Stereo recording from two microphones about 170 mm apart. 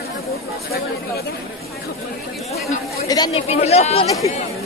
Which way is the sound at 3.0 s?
20° left (ahead or behind).